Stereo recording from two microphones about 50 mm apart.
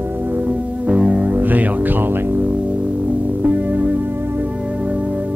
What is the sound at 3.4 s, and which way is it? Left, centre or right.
Music, right.